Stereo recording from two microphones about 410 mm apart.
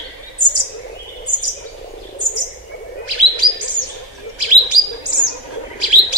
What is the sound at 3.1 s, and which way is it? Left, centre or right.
Chirp, right.